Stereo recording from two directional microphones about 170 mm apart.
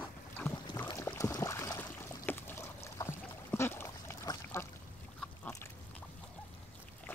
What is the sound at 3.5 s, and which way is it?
Duck, 15° left (ahead or behind).